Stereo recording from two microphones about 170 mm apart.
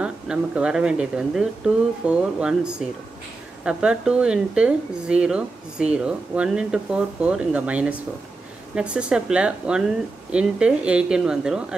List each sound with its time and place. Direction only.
0.0 s speech: 5° right (ahead or behind)